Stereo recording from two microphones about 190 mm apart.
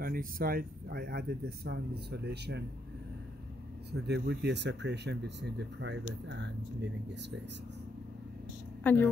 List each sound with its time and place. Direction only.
0.0 s speech: 50° right (ahead or behind)
3.9 s speech: 60° right (ahead or behind)
8.8 s a woman's voice: 10° left (ahead or behind)